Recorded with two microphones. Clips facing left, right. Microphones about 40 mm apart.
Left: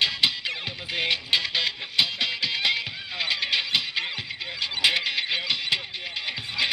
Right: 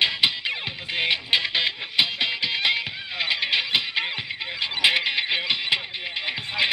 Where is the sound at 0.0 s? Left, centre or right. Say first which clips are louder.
Right 2 dB; centre.